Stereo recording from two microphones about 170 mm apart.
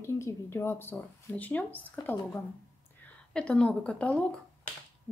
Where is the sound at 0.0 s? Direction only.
15° left (ahead or behind).